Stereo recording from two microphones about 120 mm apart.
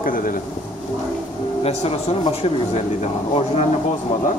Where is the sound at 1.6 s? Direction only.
55° left (ahead or behind).